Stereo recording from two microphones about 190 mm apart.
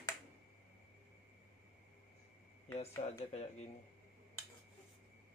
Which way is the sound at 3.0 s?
40° left (ahead or behind).